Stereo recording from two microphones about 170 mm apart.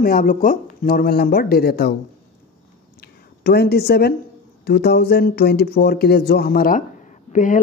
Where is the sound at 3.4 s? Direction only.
65° left (ahead or behind).